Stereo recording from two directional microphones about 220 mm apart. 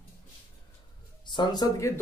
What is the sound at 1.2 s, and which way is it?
Speech, 20° left (ahead or behind).